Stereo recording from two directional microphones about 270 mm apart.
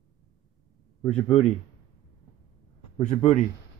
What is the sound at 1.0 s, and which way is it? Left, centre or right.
Speech, centre.